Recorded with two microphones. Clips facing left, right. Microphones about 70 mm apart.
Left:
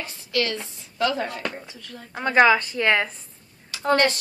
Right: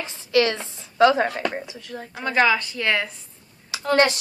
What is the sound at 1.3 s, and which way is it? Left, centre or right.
Speech, right.